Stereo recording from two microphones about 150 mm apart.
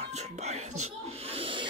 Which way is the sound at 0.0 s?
50° right (ahead or behind).